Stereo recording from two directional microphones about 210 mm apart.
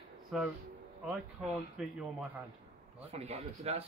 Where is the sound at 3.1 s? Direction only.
30° right (ahead or behind).